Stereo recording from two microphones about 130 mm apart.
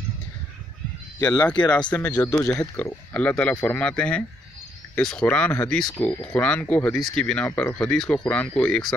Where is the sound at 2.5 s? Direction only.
10° left (ahead or behind).